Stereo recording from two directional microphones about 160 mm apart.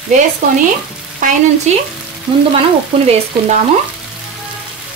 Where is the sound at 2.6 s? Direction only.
40° right (ahead or behind).